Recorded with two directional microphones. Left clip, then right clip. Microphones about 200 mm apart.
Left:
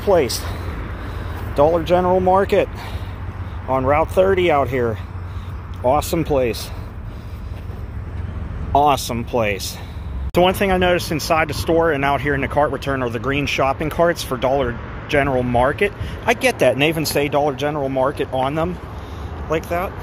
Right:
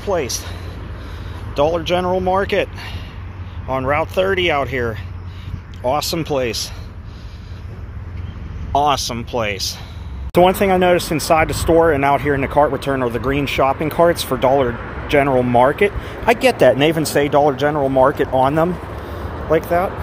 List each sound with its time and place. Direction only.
0.0 s speech: 20° left (ahead or behind)
1.5 s speech: 5° left (ahead or behind)
5.9 s speech: 10° left (ahead or behind)
8.7 s speech: 5° left (ahead or behind)
10.3 s speech: 5° right (ahead or behind)